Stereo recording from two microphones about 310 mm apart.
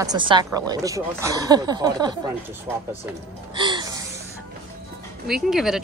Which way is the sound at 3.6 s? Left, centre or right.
Centre.